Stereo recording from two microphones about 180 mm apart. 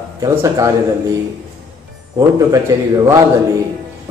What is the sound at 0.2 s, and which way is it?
Speech, 15° right (ahead or behind).